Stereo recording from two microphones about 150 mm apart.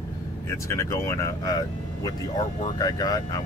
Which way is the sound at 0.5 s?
20° left (ahead or behind).